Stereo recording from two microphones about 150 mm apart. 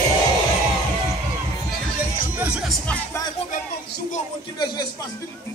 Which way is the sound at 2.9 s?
10° left (ahead or behind).